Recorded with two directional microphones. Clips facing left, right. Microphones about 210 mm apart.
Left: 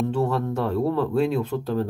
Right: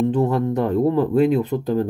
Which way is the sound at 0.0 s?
15° right (ahead or behind).